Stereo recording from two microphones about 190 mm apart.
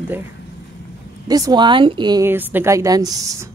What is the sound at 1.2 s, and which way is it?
Speech, 20° right (ahead or behind).